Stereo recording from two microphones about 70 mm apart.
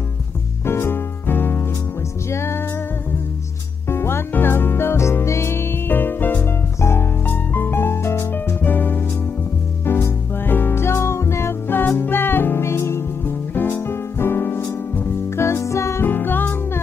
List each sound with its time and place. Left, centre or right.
0.7 s music: left
3.9 s music: left
10.4 s music: left
16.1 s music: left